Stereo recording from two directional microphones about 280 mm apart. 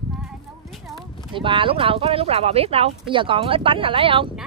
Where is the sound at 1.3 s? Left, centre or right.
Centre.